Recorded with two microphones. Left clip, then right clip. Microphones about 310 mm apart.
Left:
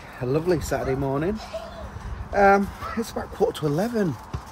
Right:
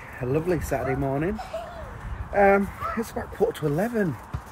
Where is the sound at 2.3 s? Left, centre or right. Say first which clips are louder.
Left 1 dB; centre.